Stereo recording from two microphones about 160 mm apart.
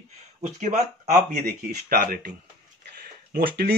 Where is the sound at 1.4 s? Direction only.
65° right (ahead or behind).